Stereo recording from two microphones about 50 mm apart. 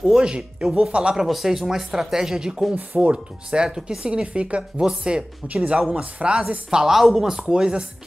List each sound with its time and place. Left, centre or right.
0.0 s speech: centre
1.1 s speech: centre; by 6.6 s right
6.7 s speech: centre